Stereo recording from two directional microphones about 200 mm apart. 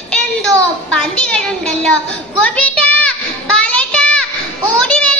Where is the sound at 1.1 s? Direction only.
5° left (ahead or behind).